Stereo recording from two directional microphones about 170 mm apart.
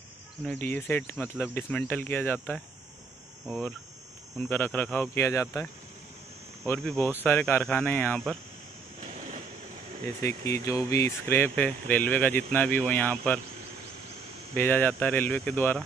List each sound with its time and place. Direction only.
0.4 s speech: 10° left (ahead or behind)
6.8 s speech: 5° left (ahead or behind)
10.0 s speech: 20° left (ahead or behind)
14.5 s speech: 10° left (ahead or behind)